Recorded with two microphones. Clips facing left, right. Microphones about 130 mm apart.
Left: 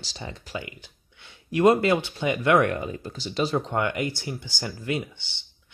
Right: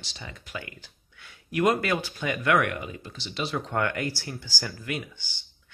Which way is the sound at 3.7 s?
20° left (ahead or behind).